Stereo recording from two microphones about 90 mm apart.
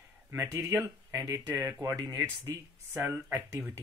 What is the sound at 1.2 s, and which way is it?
Speech, 45° right (ahead or behind).